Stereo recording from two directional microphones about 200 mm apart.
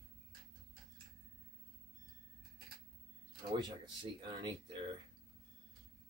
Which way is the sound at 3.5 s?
20° right (ahead or behind).